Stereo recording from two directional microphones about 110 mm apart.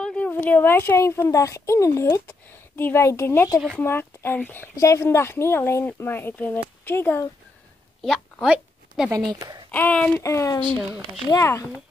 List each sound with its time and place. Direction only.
0.0 s speech: 10° left (ahead or behind)
8.0 s speech: centre (ahead or behind)
8.5 s a sound: 5° right (ahead or behind)
9.3 s speech: 35° right (ahead or behind)
9.7 s speech: 10° left (ahead or behind)
10.2 s speech: 25° left (ahead or behind)